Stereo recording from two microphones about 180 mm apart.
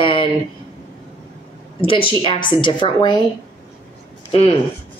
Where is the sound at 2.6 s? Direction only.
25° left (ahead or behind).